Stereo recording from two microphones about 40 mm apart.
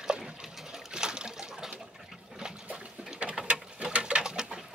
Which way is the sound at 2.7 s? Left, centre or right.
Right.